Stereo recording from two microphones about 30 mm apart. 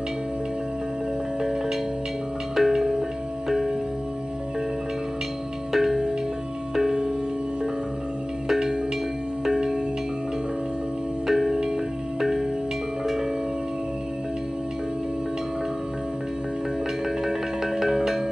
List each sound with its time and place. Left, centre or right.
2.5 s music: centre
5.7 s music: centre
11.2 s music: centre
17.2 s music: centre